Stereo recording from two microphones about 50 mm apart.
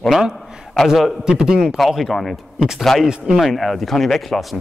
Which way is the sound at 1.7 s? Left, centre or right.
Centre.